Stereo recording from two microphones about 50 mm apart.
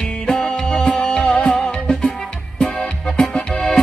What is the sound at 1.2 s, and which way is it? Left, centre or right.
Music, centre.